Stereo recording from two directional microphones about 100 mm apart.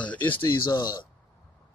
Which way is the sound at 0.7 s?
45° left (ahead or behind).